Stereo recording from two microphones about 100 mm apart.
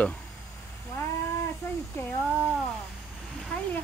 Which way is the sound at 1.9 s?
25° left (ahead or behind).